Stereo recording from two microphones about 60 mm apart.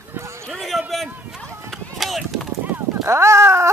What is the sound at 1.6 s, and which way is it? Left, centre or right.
Run, centre.